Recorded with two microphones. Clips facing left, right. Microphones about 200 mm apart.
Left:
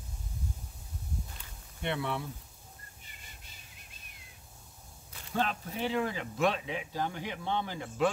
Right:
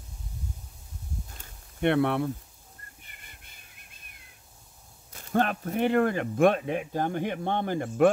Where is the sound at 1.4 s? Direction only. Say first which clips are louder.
Right 15 dB; 60° right (ahead or behind).